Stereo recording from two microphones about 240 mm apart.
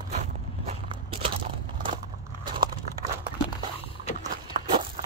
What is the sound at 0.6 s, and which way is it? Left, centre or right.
Biting, right.